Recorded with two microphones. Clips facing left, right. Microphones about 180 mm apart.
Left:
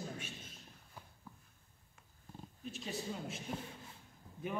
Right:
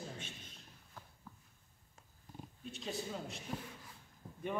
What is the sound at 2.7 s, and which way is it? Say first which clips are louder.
Speech: even; centre (ahead or behind).